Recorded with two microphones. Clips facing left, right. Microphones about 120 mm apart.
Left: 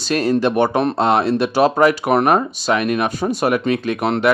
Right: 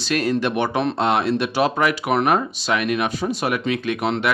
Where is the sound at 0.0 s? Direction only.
35° left (ahead or behind).